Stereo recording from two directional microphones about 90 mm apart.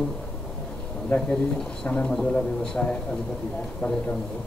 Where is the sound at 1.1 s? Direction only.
20° left (ahead or behind).